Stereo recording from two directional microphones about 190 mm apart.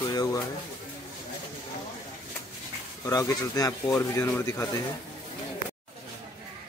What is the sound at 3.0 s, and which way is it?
Speech, 15° left (ahead or behind).